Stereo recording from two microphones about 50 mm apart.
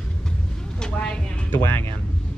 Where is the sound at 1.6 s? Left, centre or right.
Left.